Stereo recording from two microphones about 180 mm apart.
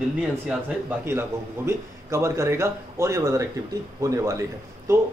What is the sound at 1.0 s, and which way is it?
A man's voice, 15° right (ahead or behind).